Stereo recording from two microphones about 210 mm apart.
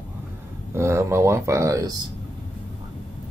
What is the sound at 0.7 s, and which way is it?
Speech, 10° right (ahead or behind).